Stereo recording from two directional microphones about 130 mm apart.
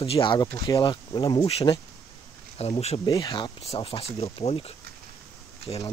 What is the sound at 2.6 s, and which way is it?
Speech, 55° left (ahead or behind).